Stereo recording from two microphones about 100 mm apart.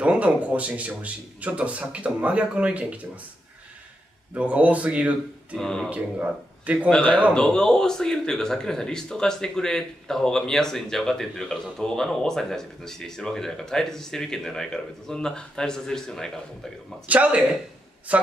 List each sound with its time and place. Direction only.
0.0 s speech: 15° right (ahead or behind)
4.3 s speech: 15° right (ahead or behind)
5.6 s speech: 5° left (ahead or behind)
5.9 s speech: 15° right (ahead or behind)
6.9 s speech: 10° left (ahead or behind)
17.1 s speech: 15° right (ahead or behind)